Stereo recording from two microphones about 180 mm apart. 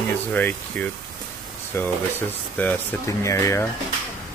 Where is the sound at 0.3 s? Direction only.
10° left (ahead or behind).